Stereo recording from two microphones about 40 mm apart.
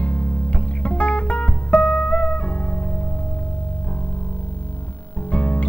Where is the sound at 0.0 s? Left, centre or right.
Left.